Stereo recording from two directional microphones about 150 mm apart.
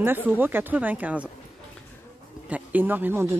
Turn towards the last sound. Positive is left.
turn(degrees=-15)  # may be behind; listen again after turning